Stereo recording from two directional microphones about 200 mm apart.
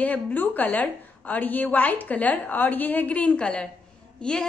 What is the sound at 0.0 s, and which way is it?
A woman's voice, 10° left (ahead or behind).